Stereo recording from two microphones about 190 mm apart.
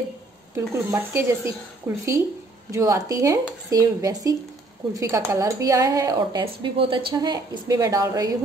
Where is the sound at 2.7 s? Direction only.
15° right (ahead or behind).